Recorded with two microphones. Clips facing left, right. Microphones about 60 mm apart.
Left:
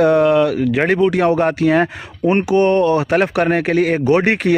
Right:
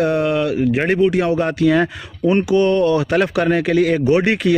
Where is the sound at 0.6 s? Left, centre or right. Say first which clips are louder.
Left 1 dB; left.